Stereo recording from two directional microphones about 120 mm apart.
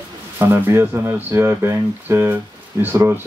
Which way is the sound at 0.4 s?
20° right (ahead or behind).